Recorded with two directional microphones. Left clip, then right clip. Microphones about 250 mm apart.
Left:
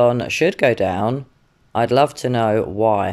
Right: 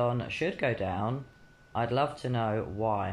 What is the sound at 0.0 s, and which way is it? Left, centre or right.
Speech, left.